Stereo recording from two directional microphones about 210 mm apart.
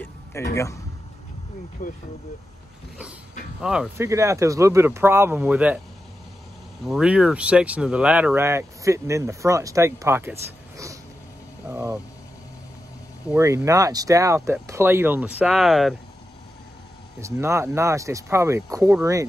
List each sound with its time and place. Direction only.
0.0 s a sound: 10° left (ahead or behind)
1.8 s speech: 35° left (ahead or behind)
3.6 s speech: centre (ahead or behind)
4.0 s speech: 15° right (ahead or behind)
6.8 s speech: 5° right (ahead or behind)
13.3 s speech: 10° right (ahead or behind)
17.2 s speech: 15° right (ahead or behind)